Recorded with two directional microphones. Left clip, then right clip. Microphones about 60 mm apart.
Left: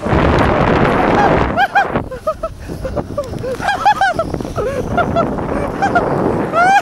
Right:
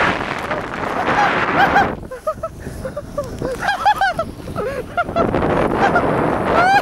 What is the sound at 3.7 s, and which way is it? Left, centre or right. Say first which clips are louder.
Honk: left 3 dB; left.